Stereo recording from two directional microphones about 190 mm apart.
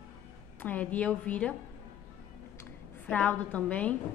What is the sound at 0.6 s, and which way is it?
Speech, 10° left (ahead or behind).